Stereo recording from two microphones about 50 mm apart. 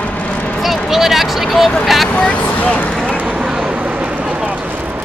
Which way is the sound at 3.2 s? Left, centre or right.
Centre.